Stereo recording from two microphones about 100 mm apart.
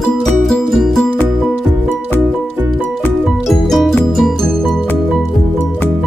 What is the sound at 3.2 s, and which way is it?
Music, 5° left (ahead or behind).